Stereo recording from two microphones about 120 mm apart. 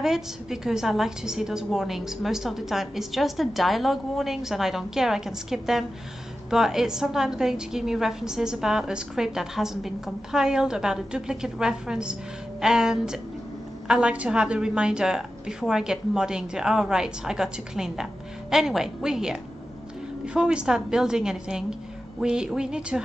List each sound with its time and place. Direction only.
0.0 s a woman's voice: 5° right (ahead or behind)